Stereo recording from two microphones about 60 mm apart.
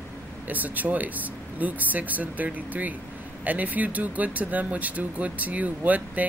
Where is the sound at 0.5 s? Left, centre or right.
Right.